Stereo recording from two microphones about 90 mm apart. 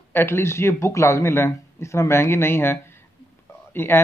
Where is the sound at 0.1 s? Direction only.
30° left (ahead or behind).